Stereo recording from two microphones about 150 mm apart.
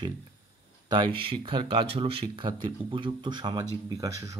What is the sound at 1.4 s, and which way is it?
Speech, 35° right (ahead or behind).